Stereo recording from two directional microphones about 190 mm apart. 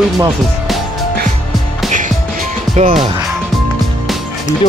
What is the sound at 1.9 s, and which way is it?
Music, 40° right (ahead or behind).